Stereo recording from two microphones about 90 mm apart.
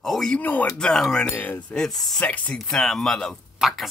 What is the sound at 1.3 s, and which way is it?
Speech, 20° left (ahead or behind).